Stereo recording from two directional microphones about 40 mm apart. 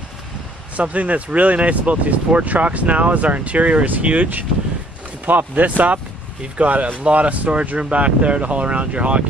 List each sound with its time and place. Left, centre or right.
0.7 s speech: right
5.5 s speech: right